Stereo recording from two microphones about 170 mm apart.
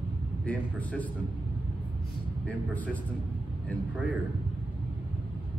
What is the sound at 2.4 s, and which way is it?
Speech, 10° left (ahead or behind).